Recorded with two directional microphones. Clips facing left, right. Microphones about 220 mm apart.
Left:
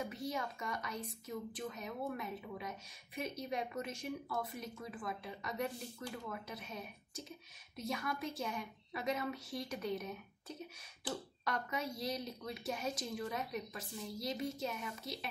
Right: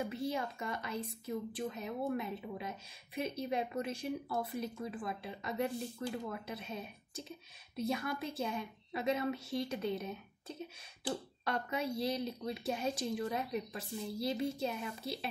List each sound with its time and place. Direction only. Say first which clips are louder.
0.1 s speech: right 4 dB; 30° right (ahead or behind)